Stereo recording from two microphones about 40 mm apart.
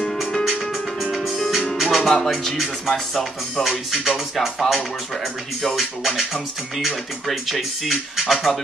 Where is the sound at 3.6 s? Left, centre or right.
Centre.